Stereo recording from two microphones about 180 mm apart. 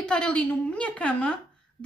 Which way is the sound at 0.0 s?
5° left (ahead or behind).